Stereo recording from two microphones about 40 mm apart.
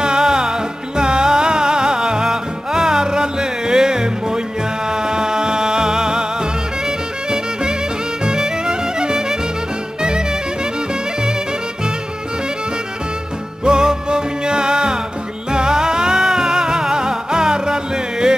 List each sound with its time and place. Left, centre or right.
0.0 s music: centre
8.2 s music: centre
13.7 s music: right